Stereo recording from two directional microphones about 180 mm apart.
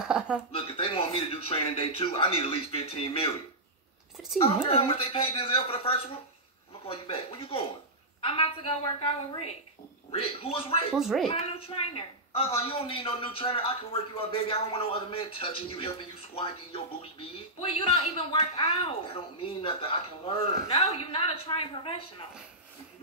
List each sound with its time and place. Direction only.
0.0 s a sound: 5° right (ahead or behind)
0.5 s speech: 30° left (ahead or behind)
4.4 s a woman's voice: 30° left (ahead or behind)
10.9 s speech: 5° right (ahead or behind)
11.2 s speech: 35° left (ahead or behind)